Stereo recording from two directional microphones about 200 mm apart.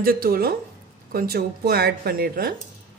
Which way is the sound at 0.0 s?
50° right (ahead or behind).